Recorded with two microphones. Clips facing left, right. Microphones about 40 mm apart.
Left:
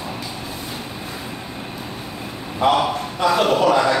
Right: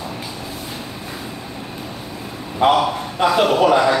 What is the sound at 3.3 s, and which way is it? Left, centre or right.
Speech, centre.